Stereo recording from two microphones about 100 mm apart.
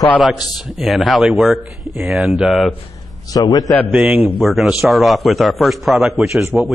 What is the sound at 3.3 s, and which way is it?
Speech, 40° left (ahead or behind).